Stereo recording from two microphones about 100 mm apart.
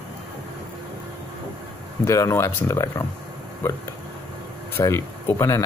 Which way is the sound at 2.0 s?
30° left (ahead or behind).